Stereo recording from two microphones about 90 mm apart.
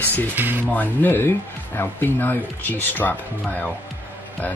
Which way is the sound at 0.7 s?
20° left (ahead or behind).